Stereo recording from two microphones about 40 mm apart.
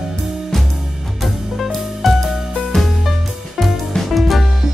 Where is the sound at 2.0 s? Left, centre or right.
Centre.